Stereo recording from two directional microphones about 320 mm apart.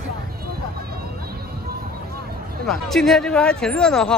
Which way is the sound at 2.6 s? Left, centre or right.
Centre.